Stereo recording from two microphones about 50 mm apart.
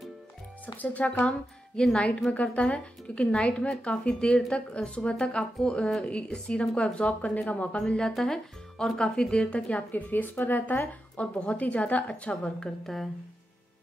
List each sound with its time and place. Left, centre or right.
0.7 s speech: left
2.0 s speech: centre
7.7 s speech: centre
9.8 s speech: left
11.1 s speech: left
12.8 s speech: centre